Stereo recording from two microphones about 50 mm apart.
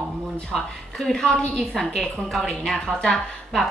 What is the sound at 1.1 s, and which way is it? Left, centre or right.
A woman's voice, centre.